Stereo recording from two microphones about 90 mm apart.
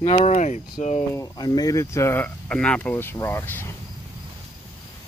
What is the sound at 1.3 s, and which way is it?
Speech, 50° left (ahead or behind).